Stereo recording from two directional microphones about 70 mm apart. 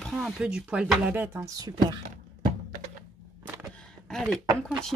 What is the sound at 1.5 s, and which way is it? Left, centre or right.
Speech, right.